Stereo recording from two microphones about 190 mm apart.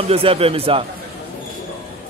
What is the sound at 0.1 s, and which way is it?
Speech, 30° right (ahead or behind).